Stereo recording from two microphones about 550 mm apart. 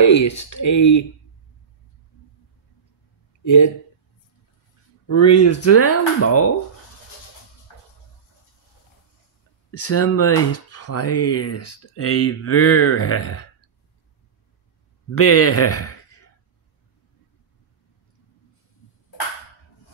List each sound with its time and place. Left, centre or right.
0.0 s speech: left
3.4 s speech: left
5.0 s speech: left
9.7 s speech: left
15.1 s speech: left